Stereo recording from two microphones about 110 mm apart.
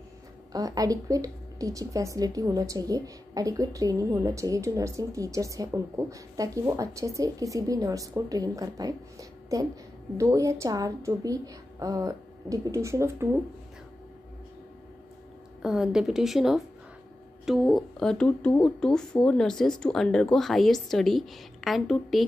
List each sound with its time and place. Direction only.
0.5 s a woman's voice: 35° right (ahead or behind)
15.6 s speech: 5° right (ahead or behind)